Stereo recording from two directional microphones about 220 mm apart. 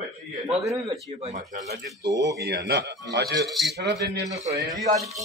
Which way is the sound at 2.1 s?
15° right (ahead or behind).